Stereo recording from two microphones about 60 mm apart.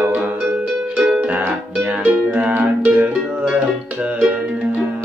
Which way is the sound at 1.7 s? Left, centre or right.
Right.